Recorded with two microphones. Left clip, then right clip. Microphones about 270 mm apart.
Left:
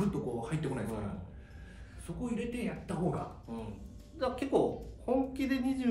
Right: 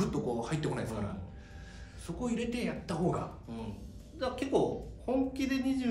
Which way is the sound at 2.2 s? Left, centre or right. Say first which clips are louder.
Right 3 dB; centre.